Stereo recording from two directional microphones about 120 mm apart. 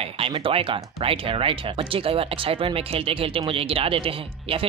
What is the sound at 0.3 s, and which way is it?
Speech, 50° right (ahead or behind).